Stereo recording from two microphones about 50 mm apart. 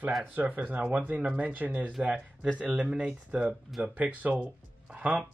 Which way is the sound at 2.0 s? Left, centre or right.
Right.